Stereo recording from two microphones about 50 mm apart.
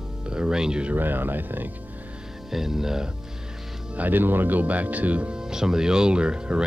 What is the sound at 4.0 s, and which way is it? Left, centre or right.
Speech, right.